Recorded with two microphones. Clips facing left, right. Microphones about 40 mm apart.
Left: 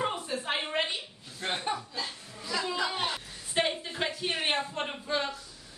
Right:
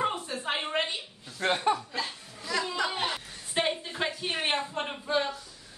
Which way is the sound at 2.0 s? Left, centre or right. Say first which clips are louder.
Right 3 dB; right.